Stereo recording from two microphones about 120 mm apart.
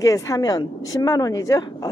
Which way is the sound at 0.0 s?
25° left (ahead or behind).